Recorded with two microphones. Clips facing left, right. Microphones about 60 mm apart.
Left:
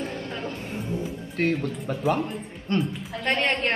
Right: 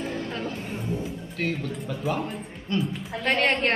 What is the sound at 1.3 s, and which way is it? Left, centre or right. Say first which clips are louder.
Speech: left 5 dB; left.